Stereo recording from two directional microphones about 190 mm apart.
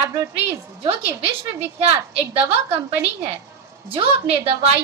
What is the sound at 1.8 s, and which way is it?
A woman's voice, 30° right (ahead or behind).